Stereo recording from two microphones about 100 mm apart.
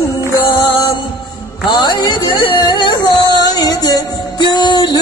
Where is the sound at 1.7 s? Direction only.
45° left (ahead or behind).